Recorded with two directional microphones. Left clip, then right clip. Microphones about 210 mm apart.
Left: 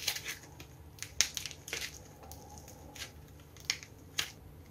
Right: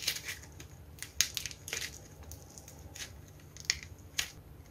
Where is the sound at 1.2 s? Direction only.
5° right (ahead or behind).